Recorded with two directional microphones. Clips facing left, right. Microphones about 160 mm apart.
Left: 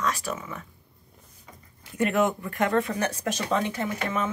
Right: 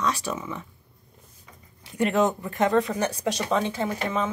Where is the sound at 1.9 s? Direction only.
20° right (ahead or behind).